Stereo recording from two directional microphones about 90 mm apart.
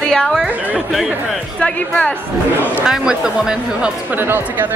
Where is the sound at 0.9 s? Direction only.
Centre (ahead or behind).